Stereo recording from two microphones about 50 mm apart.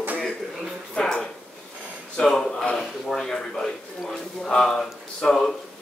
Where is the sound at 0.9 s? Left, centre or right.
Centre.